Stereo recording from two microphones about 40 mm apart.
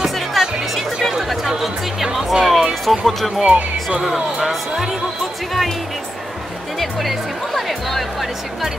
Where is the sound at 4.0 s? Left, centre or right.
Centre.